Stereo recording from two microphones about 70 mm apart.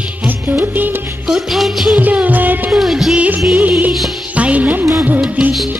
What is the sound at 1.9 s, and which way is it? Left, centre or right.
Music, right.